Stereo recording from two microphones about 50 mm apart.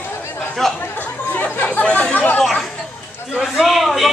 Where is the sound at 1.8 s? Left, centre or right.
Left.